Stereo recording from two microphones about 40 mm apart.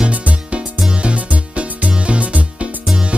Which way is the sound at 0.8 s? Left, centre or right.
Right.